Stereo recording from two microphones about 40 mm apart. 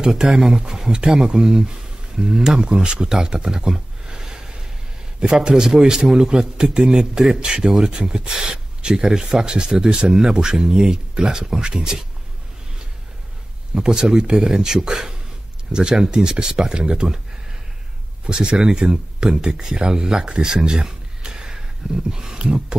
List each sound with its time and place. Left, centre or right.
0.0 s speech: centre
3.5 s a sound: centre
5.2 s speech: right
13.7 s speech: centre
18.2 s speech: right